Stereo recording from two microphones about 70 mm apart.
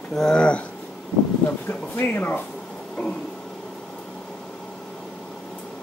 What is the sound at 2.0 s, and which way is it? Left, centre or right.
Speech, left.